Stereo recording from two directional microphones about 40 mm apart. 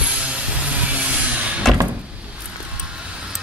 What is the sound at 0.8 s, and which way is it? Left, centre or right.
Vehicle, right.